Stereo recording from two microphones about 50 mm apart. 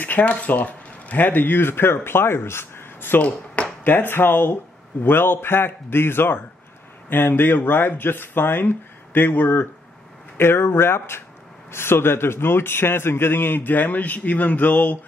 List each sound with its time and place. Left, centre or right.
0.0 s speech: left
3.3 s ping: left
3.8 s a man's voice: left
10.3 s a man's voice: left